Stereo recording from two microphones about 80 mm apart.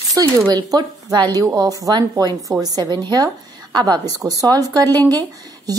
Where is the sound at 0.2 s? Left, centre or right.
Right.